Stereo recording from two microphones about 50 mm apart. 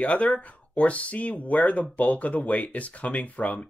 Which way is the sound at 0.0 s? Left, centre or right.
Left.